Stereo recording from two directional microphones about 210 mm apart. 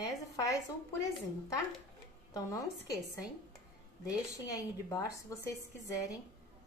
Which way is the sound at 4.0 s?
15° left (ahead or behind).